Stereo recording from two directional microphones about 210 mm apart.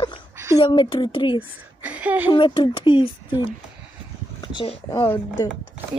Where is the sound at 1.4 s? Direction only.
5° right (ahead or behind).